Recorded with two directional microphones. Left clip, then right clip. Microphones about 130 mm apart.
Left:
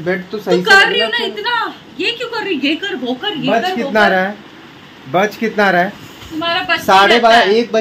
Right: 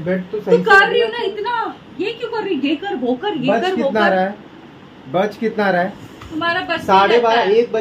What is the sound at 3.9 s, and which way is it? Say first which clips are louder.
Speech: left 6 dB; 55° left (ahead or behind).